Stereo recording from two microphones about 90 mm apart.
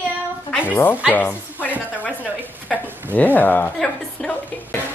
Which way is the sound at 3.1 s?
20° left (ahead or behind).